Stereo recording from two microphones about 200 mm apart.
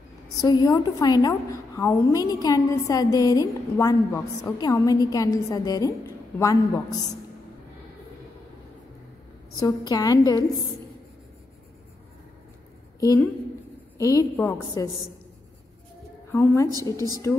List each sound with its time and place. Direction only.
0.4 s a woman's voice: 20° left (ahead or behind)
9.6 s a woman's voice: 20° left (ahead or behind)
13.0 s a woman's voice: 15° left (ahead or behind)
16.3 s a woman's voice: 10° left (ahead or behind)